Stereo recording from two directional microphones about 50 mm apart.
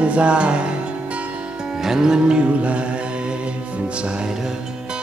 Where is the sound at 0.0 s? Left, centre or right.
Right.